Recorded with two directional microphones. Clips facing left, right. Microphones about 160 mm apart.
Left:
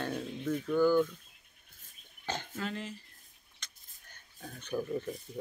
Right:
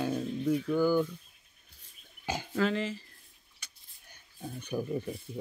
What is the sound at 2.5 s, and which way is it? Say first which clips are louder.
Speech: right 9 dB; 90° right.